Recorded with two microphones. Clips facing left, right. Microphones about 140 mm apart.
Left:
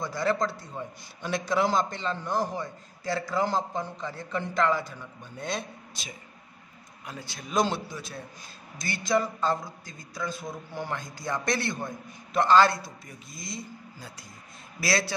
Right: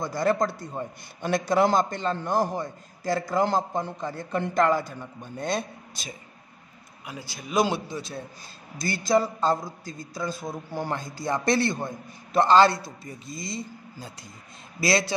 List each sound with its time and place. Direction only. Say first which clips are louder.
0.0 s a man's voice: right 3 dB; 45° right (ahead or behind)
7.1 s speech: right 2 dB; 5° right (ahead or behind)
7.9 s a man's voice: right 5 dB; 30° right (ahead or behind)